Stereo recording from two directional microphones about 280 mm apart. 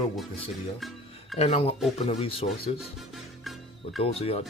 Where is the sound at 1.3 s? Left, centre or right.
Left.